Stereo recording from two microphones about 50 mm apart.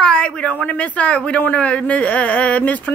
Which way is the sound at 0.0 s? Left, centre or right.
Centre.